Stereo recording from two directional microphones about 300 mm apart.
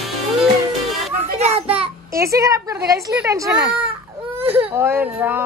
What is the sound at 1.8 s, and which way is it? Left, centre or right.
Speech, centre.